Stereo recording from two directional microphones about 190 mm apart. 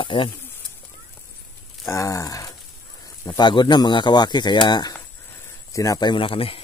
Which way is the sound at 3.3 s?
25° left (ahead or behind).